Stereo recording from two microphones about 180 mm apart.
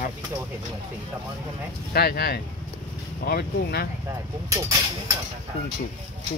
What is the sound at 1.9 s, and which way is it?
Speech, 60° left (ahead or behind).